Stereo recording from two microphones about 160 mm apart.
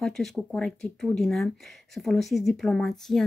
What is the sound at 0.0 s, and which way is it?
Speech, centre (ahead or behind).